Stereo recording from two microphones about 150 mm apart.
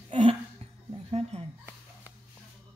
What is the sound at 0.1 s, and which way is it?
Music, 40° right (ahead or behind).